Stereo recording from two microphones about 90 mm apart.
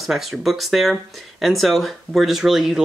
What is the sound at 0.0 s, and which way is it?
Speech, centre (ahead or behind).